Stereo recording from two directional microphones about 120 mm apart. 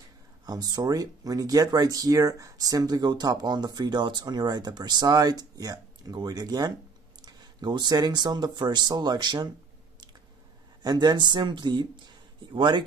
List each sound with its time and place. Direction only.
0.5 s speech: 35° right (ahead or behind)
10.8 s speech: 35° right (ahead or behind)